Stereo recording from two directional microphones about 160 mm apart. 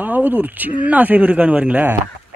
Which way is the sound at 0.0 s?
10° right (ahead or behind).